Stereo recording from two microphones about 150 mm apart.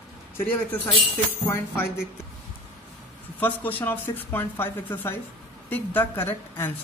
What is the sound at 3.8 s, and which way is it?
Speech, 15° left (ahead or behind).